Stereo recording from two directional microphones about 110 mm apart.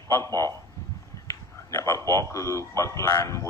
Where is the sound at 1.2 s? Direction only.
30° left (ahead or behind).